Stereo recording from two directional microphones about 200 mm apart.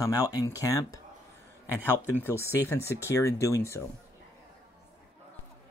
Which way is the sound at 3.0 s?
15° left (ahead or behind).